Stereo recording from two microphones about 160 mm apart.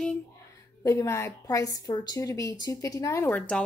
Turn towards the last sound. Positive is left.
turn(degrees=10)  # may be behind; listen again after turning